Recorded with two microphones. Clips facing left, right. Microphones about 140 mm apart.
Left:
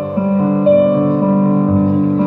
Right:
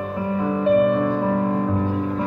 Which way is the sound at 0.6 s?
20° left (ahead or behind).